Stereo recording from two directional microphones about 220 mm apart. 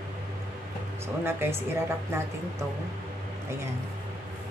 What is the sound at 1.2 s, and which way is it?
Speech, 10° right (ahead or behind).